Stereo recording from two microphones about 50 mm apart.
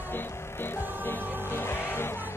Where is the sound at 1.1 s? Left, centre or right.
Left.